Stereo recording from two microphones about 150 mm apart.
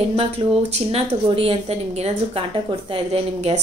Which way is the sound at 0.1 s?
45° right (ahead or behind).